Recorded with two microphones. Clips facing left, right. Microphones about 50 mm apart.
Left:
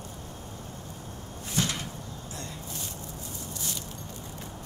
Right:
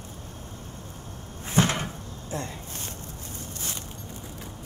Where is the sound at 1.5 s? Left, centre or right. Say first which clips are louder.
Right 7 dB; right.